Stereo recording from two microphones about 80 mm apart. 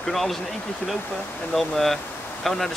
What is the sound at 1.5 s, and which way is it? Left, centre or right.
Speech, centre.